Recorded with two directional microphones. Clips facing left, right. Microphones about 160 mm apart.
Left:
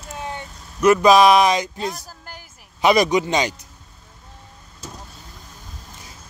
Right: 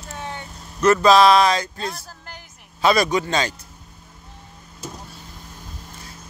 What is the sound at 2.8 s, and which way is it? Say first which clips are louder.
Speech: left 2 dB; 15° left (ahead or behind).